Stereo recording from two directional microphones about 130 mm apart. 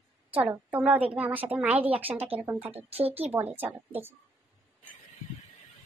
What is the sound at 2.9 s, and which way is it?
Speech, 50° right (ahead or behind).